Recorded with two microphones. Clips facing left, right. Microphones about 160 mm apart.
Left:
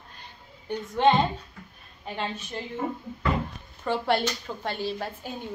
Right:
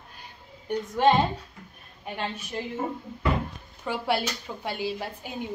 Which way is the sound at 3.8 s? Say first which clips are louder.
Left 2 dB; 10° right (ahead or behind).